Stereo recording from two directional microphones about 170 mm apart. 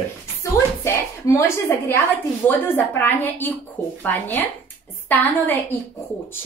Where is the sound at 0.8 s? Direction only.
15° left (ahead or behind).